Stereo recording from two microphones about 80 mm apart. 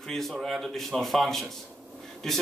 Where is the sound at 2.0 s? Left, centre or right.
Centre.